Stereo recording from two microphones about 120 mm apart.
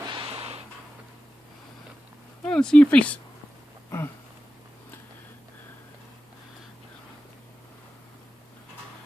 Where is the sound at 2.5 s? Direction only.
5° left (ahead or behind).